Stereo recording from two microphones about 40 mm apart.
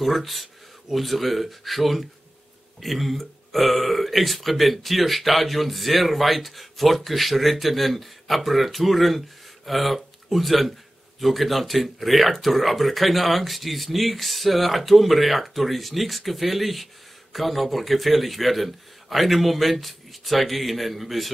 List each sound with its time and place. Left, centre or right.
0.0 s speech: centre